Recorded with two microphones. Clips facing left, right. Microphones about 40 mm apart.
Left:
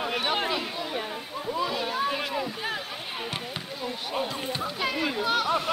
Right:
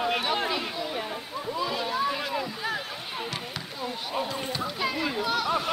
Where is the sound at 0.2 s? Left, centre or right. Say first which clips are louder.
Even; centre.